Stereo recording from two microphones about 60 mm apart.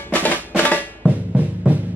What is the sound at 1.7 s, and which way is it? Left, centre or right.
Music, right.